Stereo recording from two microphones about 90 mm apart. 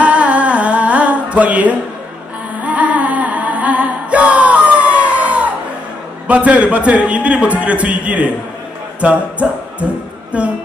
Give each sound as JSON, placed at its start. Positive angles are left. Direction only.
{"t": 0.0, "sound": "music", "side_deg": -15}
{"t": 6.2, "sound": "a man's voice", "side_deg": -15}
{"t": 9.0, "sound": "music", "side_deg": -15}
{"t": 10.3, "sound": "a man's voice", "side_deg": -15}